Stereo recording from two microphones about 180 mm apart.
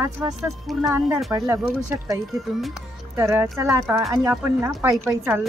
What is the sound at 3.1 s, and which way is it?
Speech, 15° right (ahead or behind).